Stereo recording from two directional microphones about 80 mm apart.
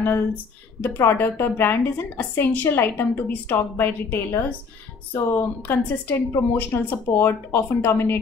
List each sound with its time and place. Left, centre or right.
0.8 s a woman's voice: left